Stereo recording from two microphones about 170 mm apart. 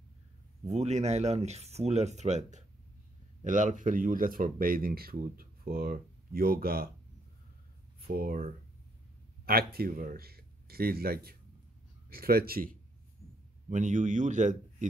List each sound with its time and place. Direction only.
0.7 s speech: 40° right (ahead or behind); by 6.9 s 60° right (ahead or behind)
8.1 s speech: 60° right (ahead or behind)
9.5 s speech: 65° right (ahead or behind)
13.7 s a man's voice: 45° right (ahead or behind)